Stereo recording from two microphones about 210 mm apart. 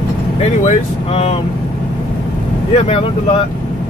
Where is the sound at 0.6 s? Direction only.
30° left (ahead or behind).